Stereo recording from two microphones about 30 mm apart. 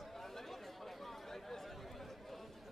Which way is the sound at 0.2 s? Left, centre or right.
Centre.